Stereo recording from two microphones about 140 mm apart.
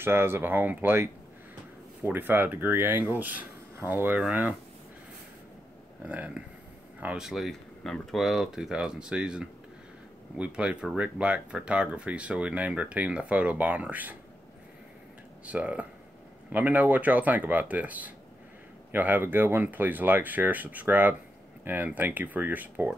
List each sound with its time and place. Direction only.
0.0 s speech: 15° right (ahead or behind)
6.0 s speech: 10° right (ahead or behind)
15.4 s speech: 10° right (ahead or behind)